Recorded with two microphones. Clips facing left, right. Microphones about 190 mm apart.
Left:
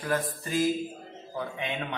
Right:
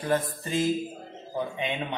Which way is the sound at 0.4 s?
25° right (ahead or behind).